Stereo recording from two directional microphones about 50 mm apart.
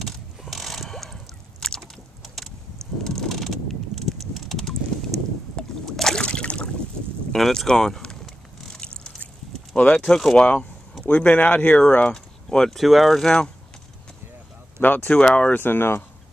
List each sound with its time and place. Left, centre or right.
0.0 s a sound: centre
3.0 s vehicle: centre
5.9 s boat: centre
6.2 s a sound: left
7.3 s speech: centre
8.5 s vehicle: centre
9.8 s speech: centre
10.4 s speech: left
12.4 s speech: centre
12.7 s speech: centre
13.2 s speech: centre
14.8 s speech: left
15.6 s speech: left